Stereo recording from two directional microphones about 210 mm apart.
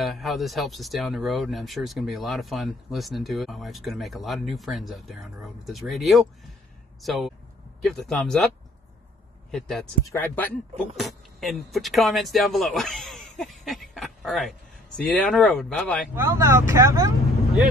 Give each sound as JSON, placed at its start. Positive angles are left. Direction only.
{"t": 0.0, "sound": "speech", "side_deg": 0}
{"t": 10.0, "sound": "speech", "side_deg": 10}
{"t": 13.7, "sound": "a sound", "side_deg": 0}
{"t": 15.0, "sound": "speech", "side_deg": 5}
{"t": 16.2, "sound": "speech", "side_deg": -15}